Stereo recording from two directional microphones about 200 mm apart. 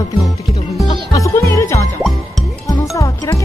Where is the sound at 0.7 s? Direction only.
15° left (ahead or behind).